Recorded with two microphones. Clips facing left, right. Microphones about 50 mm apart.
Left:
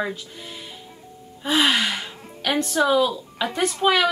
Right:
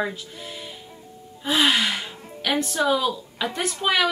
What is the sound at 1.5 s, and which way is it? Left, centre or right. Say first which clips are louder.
Gasp: left 1 dB; centre.